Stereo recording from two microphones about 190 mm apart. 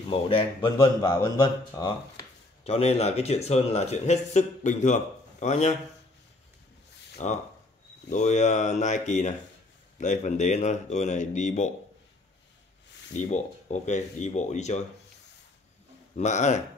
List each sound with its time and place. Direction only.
0.1 s speech: 30° left (ahead or behind)
7.2 s speech: 40° left (ahead or behind)
13.1 s speech: 40° left (ahead or behind)
16.2 s speech: 40° left (ahead or behind)